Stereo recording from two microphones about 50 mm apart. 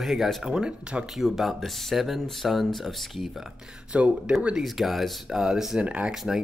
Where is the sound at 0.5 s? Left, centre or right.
Centre.